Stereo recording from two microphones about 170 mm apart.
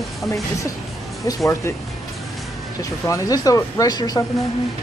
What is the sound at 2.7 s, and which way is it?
Speech, 20° left (ahead or behind).